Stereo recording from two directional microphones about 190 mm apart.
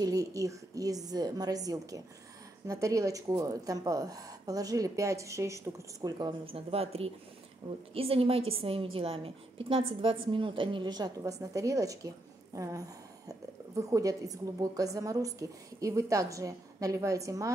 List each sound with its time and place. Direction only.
0.0 s a woman's voice: 20° right (ahead or behind)